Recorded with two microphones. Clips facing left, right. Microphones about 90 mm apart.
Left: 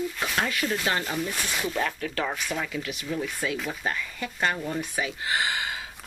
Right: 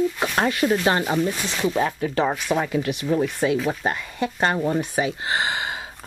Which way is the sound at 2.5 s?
40° right (ahead or behind).